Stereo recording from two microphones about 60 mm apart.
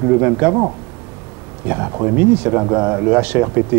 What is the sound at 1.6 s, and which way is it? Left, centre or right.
Speech, right.